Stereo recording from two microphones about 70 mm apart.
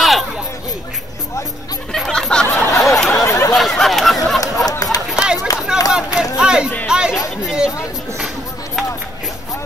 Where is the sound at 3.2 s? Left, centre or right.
Left.